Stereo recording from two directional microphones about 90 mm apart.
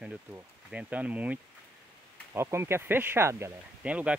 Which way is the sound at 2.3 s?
30° right (ahead or behind).